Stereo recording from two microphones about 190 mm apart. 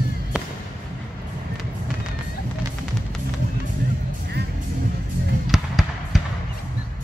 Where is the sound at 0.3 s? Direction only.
5° right (ahead or behind).